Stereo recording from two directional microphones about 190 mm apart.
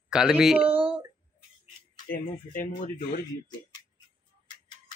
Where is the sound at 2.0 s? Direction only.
45° left (ahead or behind).